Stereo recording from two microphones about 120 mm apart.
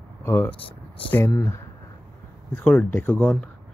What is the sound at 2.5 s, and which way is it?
Speech, 15° left (ahead or behind).